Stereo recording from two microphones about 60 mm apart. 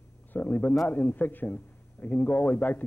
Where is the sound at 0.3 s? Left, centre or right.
Left.